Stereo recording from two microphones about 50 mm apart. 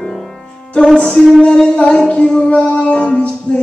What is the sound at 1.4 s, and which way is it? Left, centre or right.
Music, left.